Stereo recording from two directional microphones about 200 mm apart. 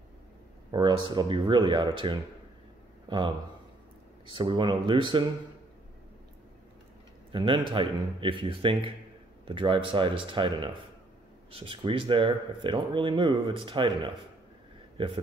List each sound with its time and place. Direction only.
0.7 s a man's voice: 20° right (ahead or behind)
4.4 s speech: 25° right (ahead or behind)
7.3 s speech: 25° right (ahead or behind)